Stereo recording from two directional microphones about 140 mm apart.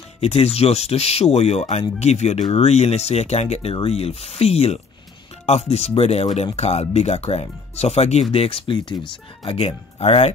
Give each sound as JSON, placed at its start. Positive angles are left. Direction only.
{"t": 0.2, "sound": "speech", "side_deg": 50}